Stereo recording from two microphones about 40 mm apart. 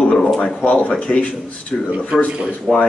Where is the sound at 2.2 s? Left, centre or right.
Right.